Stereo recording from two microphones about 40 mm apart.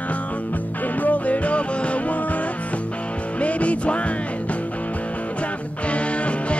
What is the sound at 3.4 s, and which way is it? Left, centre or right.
Music, left.